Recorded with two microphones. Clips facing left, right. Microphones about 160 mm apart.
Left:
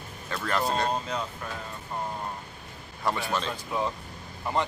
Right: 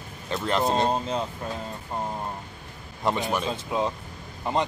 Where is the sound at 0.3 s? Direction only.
20° right (ahead or behind).